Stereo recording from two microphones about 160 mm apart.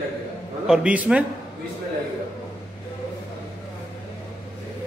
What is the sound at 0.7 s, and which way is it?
Speech, 10° right (ahead or behind).